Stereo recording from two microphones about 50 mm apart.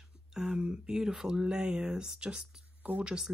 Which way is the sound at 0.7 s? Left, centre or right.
Centre.